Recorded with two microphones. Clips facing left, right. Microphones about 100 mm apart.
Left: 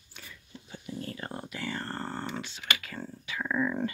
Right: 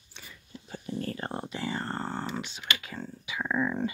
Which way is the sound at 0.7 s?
40° right (ahead or behind).